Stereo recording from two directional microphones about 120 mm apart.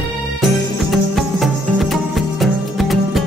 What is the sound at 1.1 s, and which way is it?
Music, centre (ahead or behind).